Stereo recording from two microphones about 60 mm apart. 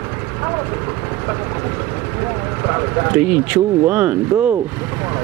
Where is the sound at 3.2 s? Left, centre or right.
Right.